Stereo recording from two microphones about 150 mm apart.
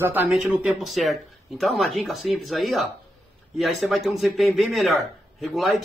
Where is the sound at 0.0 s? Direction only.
15° right (ahead or behind).